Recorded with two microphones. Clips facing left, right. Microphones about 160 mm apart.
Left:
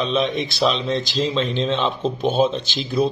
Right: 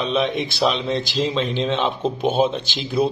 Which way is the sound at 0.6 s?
15° right (ahead or behind).